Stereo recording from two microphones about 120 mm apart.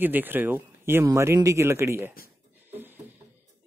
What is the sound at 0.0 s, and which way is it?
Speech, 15° right (ahead or behind).